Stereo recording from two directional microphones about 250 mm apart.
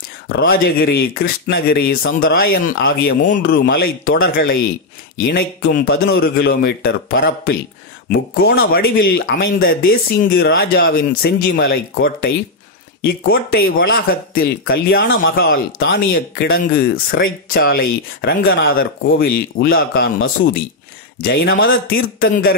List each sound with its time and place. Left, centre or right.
0.4 s speech: left